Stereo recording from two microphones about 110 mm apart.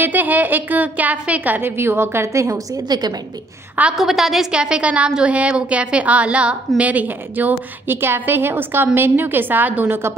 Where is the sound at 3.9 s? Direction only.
5° right (ahead or behind).